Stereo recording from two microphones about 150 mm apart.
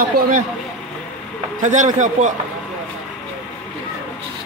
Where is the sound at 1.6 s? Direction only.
55° right (ahead or behind).